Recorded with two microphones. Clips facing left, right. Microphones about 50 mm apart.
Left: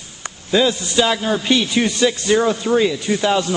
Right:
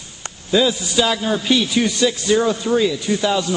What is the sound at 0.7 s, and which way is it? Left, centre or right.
Speech, centre.